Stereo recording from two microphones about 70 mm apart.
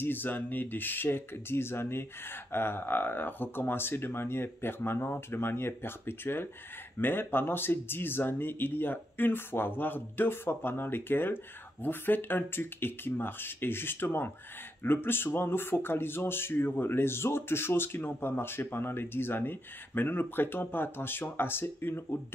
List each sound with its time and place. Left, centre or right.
0.0 s speech: left